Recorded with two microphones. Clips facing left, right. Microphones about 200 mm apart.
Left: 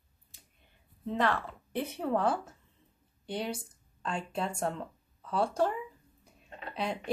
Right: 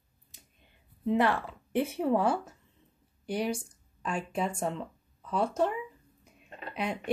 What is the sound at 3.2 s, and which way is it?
Speech, 25° left (ahead or behind).